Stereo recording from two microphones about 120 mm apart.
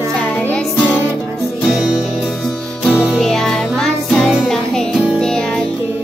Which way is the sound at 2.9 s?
10° right (ahead or behind).